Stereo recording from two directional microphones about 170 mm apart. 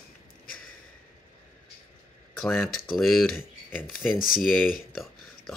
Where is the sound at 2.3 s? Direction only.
5° left (ahead or behind).